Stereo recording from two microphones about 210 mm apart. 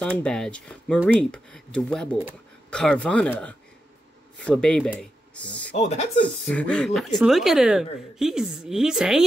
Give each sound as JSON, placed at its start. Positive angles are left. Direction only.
{"t": 0.2, "sound": "speech", "side_deg": 5}
{"t": 5.8, "sound": "speech", "side_deg": 30}
{"t": 6.4, "sound": "speech", "side_deg": 5}